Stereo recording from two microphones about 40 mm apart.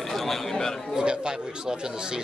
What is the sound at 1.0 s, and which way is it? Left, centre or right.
Speech, centre.